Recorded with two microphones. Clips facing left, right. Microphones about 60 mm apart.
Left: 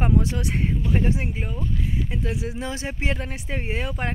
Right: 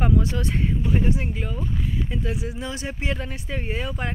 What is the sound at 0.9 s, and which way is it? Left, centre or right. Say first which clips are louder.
Speech: even; left.